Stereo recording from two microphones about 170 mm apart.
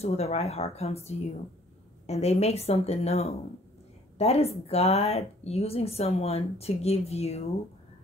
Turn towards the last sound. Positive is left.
turn(degrees=40)  # may be behind; listen again after turning